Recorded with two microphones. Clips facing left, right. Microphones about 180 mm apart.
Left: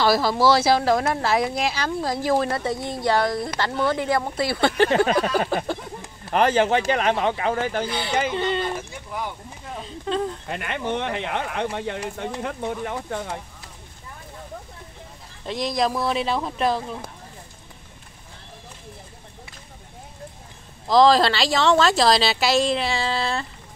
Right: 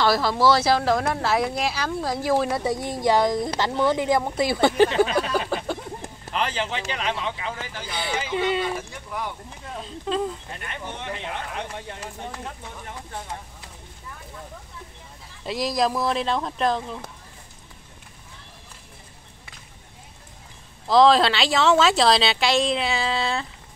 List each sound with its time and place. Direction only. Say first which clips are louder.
0.0 s speech: left 1 dB; 5° left (ahead or behind); by 4.8 s 15° right (ahead or behind)
4.8 s a sound: left 1 dB; 50° left (ahead or behind)
6.9 s speech: left 7 dB; 55° left (ahead or behind)
8.4 s speech: even; 5° right (ahead or behind)
10.5 s speech: left 9 dB; 80° left
15.4 s speech: even; 5° right (ahead or behind)
20.8 s speech: even; centre (ahead or behind)